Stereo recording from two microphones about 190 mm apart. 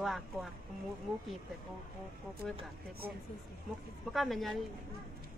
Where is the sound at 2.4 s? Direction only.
Centre (ahead or behind).